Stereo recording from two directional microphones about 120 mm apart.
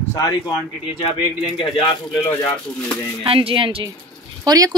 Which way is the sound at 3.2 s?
50° right (ahead or behind).